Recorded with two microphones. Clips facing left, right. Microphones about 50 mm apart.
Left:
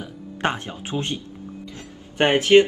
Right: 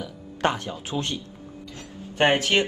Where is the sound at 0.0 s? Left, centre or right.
Left.